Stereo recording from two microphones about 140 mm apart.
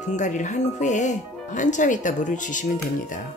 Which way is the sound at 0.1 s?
60° left (ahead or behind).